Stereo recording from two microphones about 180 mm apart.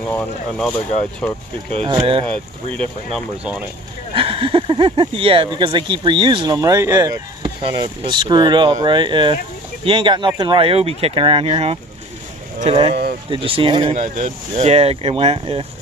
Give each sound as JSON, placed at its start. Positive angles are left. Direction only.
{"t": 0.1, "sound": "speech", "side_deg": 5}
{"t": 1.7, "sound": "speech", "side_deg": -30}
{"t": 3.2, "sound": "speech", "side_deg": -5}
{"t": 4.1, "sound": "speech", "side_deg": -30}
{"t": 13.9, "sound": "speech", "side_deg": -40}